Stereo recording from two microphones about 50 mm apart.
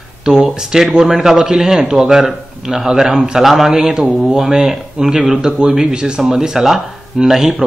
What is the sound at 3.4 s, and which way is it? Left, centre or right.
A man's voice, centre.